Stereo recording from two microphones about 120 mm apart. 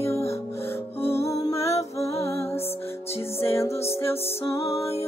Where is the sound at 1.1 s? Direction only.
25° left (ahead or behind).